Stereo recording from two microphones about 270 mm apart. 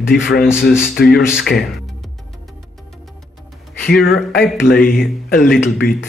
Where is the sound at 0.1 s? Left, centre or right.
Left.